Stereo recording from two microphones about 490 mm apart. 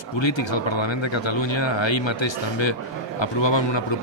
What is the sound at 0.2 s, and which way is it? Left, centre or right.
A man's voice, left.